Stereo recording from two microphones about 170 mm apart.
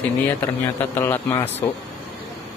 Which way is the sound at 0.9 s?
15° left (ahead or behind).